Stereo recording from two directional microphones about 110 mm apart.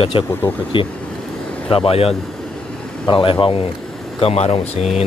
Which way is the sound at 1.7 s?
60° left (ahead or behind).